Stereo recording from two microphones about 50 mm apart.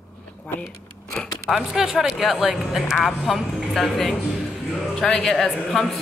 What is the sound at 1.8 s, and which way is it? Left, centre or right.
A woman's voice, centre.